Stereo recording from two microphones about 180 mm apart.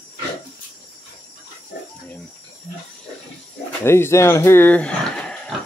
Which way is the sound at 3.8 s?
15° left (ahead or behind).